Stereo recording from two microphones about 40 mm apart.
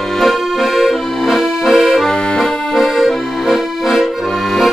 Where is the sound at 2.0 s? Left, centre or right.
Centre.